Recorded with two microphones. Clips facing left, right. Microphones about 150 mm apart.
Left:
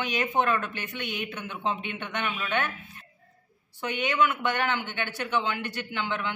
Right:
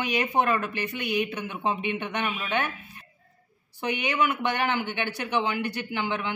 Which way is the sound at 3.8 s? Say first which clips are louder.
Even; 15° right (ahead or behind).